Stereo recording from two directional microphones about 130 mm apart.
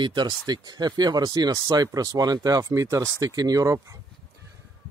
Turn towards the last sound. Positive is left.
turn(degrees=-25)  # may be behind; listen again after turning